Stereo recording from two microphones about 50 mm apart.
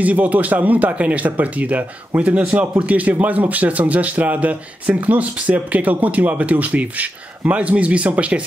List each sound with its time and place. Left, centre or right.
0.0 s speech: right